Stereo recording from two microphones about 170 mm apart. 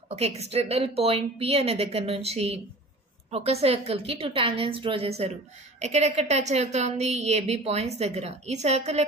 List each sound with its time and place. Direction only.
0.1 s a woman's voice: 40° right (ahead or behind)